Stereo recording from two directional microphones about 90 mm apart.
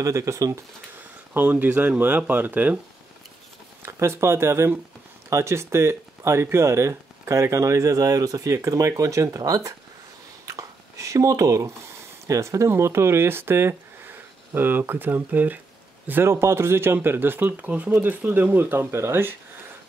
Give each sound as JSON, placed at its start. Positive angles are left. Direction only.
{"t": 0.0, "sound": "speech", "side_deg": -35}
{"t": 0.9, "sound": "speech", "side_deg": -20}
{"t": 3.8, "sound": "speech", "side_deg": -30}
{"t": 10.4, "sound": "a sound", "side_deg": -40}
{"t": 12.3, "sound": "speech", "side_deg": -35}